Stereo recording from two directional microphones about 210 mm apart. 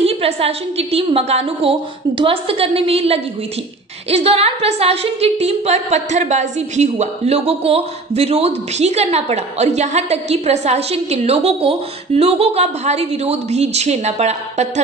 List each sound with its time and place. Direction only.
0.0 s a woman's voice: 30° right (ahead or behind)